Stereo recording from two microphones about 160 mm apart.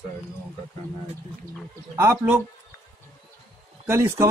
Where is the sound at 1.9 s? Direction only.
15° right (ahead or behind).